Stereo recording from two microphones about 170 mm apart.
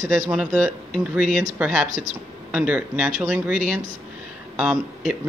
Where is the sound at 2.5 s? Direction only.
5° right (ahead or behind).